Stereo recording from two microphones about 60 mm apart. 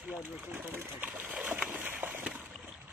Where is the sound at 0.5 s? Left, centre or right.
Right.